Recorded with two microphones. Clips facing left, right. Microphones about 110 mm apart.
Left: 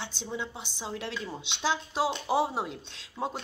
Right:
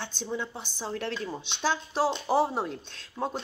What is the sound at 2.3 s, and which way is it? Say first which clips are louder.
Speech: right 2 dB; 15° left (ahead or behind).